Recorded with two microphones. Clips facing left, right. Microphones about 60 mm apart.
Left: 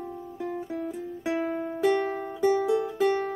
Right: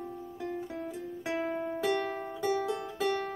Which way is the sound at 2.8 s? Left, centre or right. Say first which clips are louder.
Left 7 dB; centre.